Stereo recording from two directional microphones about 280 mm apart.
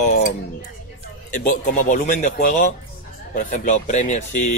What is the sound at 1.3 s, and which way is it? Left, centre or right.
Speech, left.